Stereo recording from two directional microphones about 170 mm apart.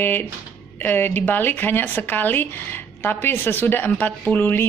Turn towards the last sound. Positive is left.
turn(degrees=10)  # may be behind; listen again after turning